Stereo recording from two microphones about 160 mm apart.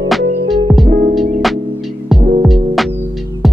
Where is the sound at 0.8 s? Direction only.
65° right (ahead or behind).